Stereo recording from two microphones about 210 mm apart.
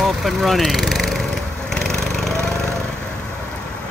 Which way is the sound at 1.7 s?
Centre (ahead or behind).